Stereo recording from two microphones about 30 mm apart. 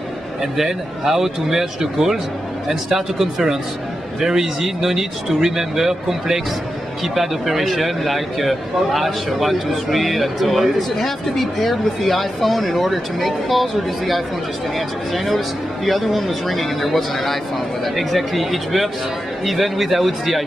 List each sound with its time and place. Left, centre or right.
0.6 s speech: centre